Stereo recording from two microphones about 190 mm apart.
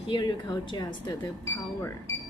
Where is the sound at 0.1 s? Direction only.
25° left (ahead or behind).